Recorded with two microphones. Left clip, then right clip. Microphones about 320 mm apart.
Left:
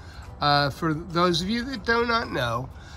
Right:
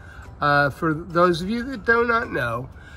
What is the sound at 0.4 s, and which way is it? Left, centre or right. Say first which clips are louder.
Speech: right 3 dB; centre.